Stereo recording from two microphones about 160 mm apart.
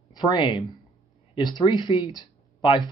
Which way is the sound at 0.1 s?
30° left (ahead or behind).